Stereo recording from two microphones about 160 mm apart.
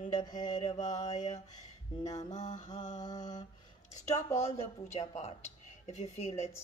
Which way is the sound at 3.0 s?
25° left (ahead or behind).